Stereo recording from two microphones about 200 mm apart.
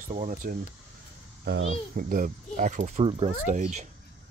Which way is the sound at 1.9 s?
45° right (ahead or behind).